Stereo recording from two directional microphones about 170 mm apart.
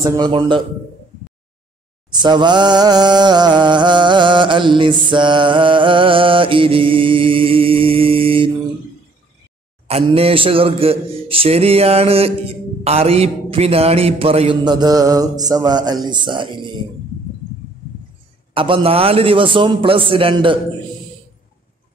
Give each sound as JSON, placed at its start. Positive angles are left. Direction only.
{"t": 0.0, "sound": "a man's voice", "side_deg": -20}
{"t": 0.3, "sound": "a man's voice", "side_deg": -30}
{"t": 2.2, "sound": "a man's voice", "side_deg": -25}
{"t": 5.1, "sound": "mantra", "side_deg": -30}
{"t": 9.8, "sound": "a man's voice", "side_deg": -35}
{"t": 18.5, "sound": "mantra", "side_deg": -30}